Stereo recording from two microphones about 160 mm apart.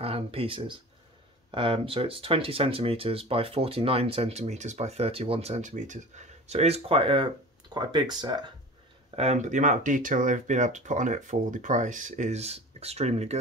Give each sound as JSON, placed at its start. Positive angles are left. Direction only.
{"t": 0.0, "sound": "speech", "side_deg": -35}
{"t": 9.1, "sound": "speech", "side_deg": -40}